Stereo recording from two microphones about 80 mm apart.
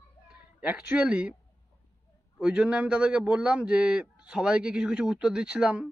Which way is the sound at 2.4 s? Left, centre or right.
Centre.